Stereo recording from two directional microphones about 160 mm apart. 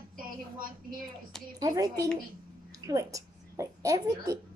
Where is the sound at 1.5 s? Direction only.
20° right (ahead or behind).